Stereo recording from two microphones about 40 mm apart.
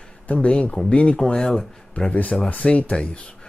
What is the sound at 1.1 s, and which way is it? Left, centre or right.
Speech, centre.